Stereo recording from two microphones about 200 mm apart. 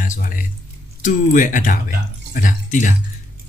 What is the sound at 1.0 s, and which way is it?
Speech, 40° left (ahead or behind).